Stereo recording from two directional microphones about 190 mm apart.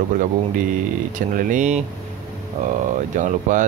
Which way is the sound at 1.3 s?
45° right (ahead or behind).